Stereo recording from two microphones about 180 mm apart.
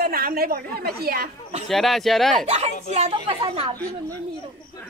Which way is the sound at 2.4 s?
35° right (ahead or behind).